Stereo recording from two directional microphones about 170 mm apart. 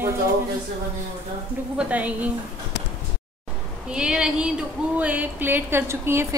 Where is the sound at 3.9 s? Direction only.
5° right (ahead or behind).